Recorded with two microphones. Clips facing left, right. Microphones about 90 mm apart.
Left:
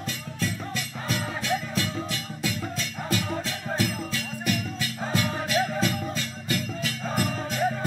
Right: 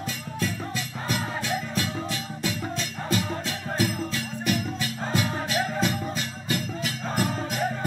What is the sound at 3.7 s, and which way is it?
Music, 15° right (ahead or behind).